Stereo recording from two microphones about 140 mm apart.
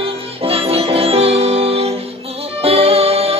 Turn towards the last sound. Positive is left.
turn(degrees=-45)  # may be behind; listen again after turning